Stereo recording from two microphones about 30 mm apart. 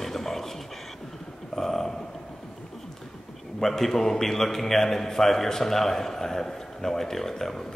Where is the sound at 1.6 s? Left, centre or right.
Centre.